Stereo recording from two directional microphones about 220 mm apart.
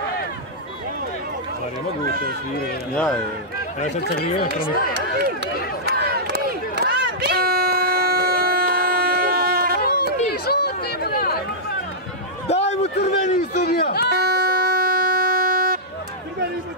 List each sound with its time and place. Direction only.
3.8 s speech: 40° left (ahead or behind)
4.3 s speech: 25° left (ahead or behind)
5.9 s crowd: 45° right (ahead or behind)
10.4 s chatter: 45° left (ahead or behind)
12.4 s a sound: 30° left (ahead or behind)
13.6 s speech: 45° left (ahead or behind)
14.1 s a sound: 45° right (ahead or behind)